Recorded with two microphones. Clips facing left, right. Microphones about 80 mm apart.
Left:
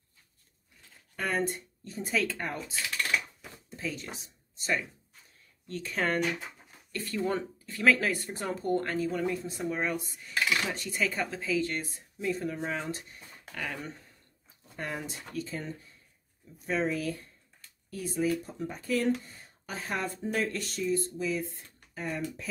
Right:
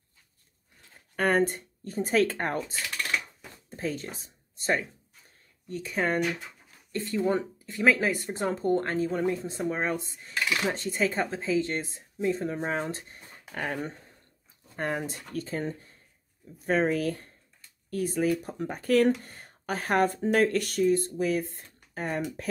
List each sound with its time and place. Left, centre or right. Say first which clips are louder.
1.1 s speech: right 6 dB; right
3.7 s speech: right 4 dB; right
5.7 s speech: right 2 dB; centre
6.9 s speech: right 4 dB; right